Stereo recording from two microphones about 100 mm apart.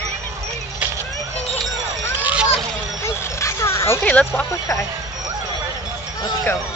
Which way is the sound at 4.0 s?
15° left (ahead or behind).